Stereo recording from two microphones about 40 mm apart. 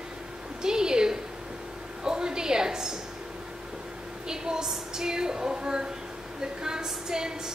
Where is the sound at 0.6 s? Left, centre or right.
Centre.